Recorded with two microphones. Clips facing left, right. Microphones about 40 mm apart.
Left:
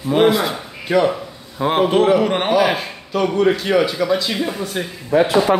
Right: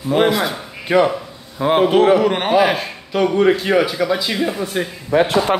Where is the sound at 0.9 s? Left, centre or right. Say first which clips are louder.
Right 2 dB; centre.